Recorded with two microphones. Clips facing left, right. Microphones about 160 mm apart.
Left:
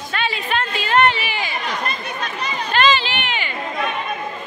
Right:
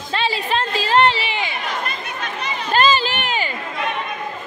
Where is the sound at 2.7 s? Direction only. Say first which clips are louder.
Right 1 dB; 40° right (ahead or behind).